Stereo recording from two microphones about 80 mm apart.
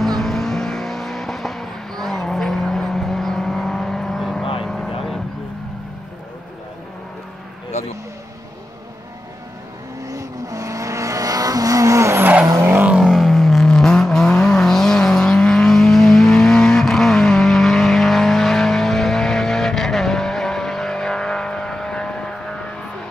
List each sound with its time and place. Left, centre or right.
0.0 s vehicle: centre
10.0 s vehicle: right
12.2 s vehicle: right
12.5 s vehicle: right
13.0 s vehicle: centre